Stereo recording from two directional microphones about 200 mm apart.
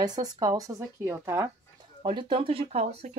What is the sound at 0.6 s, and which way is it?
Speech, 15° right (ahead or behind).